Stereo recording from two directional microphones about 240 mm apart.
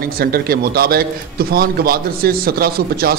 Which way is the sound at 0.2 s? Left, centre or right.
Right.